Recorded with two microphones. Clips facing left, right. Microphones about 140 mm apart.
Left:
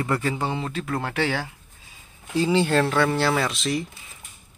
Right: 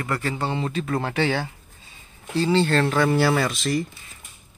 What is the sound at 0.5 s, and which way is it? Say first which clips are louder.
Speech: right 3 dB; centre (ahead or behind).